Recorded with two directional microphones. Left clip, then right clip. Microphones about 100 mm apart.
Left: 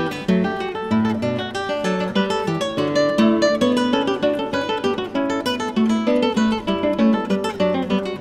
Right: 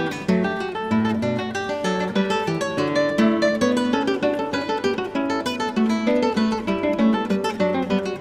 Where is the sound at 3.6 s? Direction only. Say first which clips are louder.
Left 2 dB; 30° left (ahead or behind).